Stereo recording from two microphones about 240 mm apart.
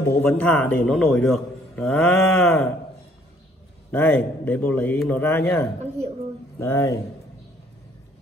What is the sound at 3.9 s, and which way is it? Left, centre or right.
A man's voice, centre.